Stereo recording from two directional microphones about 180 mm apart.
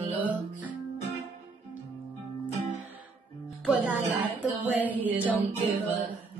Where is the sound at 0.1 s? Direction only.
10° right (ahead or behind).